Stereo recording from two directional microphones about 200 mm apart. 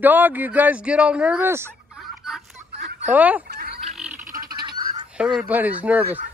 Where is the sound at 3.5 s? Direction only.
50° right (ahead or behind).